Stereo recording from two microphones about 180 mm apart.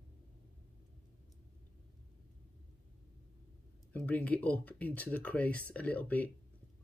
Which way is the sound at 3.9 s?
10° left (ahead or behind).